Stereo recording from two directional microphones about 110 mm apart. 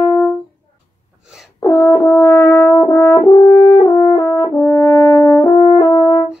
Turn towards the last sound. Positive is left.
turn(degrees=25)  # may be behind; listen again after turning